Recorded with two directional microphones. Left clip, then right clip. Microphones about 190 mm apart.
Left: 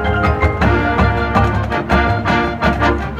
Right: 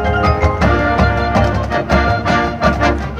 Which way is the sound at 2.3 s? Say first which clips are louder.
Right 2 dB; 20° right (ahead or behind).